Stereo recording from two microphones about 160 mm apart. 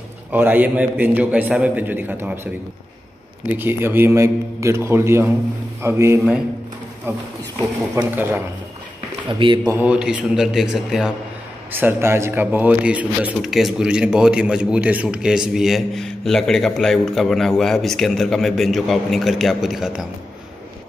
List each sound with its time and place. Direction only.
0.3 s a man's voice: 10° right (ahead or behind)
3.5 s a man's voice: 15° right (ahead or behind)
9.3 s speech: 30° right (ahead or behind)
9.7 s speech: 10° right (ahead or behind)
11.7 s speech: 15° right (ahead or behind)